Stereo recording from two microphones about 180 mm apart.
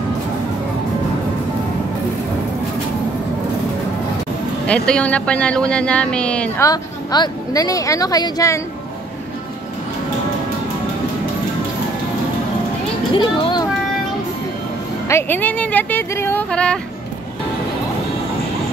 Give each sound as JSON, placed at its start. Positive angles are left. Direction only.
{"t": 4.6, "sound": "speech", "side_deg": 5}
{"t": 6.6, "sound": "a woman's voice", "side_deg": 20}
{"t": 13.1, "sound": "a woman's voice", "side_deg": 25}
{"t": 15.0, "sound": "speech", "side_deg": 15}